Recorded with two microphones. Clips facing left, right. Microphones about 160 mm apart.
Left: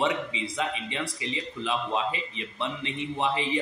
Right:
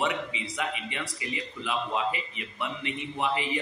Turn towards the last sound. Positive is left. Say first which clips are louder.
# left 2 dB
turn(degrees=25)  # may be behind; listen again after turning